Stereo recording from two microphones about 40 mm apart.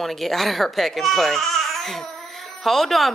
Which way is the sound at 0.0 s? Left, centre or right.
Centre.